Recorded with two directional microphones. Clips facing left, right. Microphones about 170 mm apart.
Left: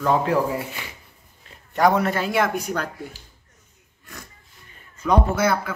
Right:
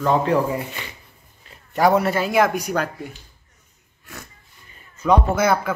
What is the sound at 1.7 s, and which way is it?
A man's voice, 5° right (ahead or behind).